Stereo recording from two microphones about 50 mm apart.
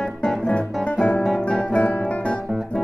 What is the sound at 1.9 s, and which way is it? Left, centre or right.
Guitar, left.